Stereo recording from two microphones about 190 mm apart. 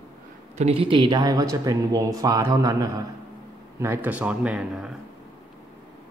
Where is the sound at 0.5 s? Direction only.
30° right (ahead or behind); by 4.9 s 5° right (ahead or behind).